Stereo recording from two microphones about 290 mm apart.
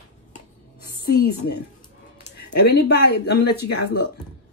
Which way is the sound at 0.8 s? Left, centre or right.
Left.